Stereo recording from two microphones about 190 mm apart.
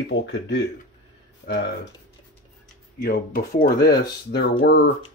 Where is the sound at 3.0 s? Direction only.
50° left (ahead or behind).